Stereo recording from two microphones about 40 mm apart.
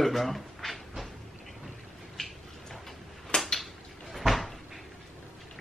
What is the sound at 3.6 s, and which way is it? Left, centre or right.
Cupboard open or close, centre.